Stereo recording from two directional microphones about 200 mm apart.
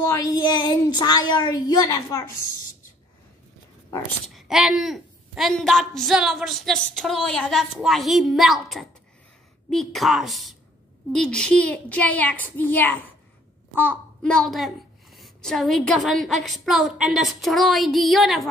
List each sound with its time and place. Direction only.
0.0 s speech: 15° left (ahead or behind)
4.3 s a child's voice: centre (ahead or behind)